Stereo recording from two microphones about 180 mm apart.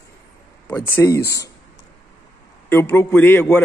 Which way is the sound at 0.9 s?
15° left (ahead or behind).